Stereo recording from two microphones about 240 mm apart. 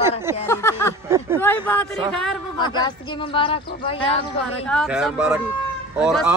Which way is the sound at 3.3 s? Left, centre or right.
Left.